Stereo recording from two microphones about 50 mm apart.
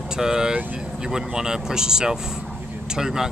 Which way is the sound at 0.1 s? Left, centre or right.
Centre.